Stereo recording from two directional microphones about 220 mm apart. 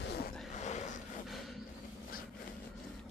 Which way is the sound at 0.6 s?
30° left (ahead or behind).